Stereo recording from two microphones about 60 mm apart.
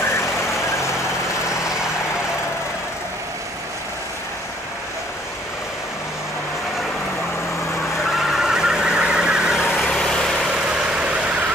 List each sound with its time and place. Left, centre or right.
0.0 s vehicle: left
1.6 s vehicle: centre
8.0 s vehicle: centre
9.8 s vehicle: centre
10.5 s vehicle: centre